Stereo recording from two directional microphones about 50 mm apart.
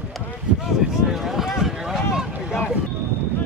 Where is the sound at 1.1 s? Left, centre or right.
Centre.